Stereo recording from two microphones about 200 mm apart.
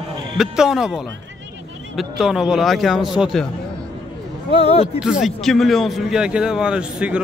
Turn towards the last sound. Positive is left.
turn(degrees=-5)  # may be behind; listen again after turning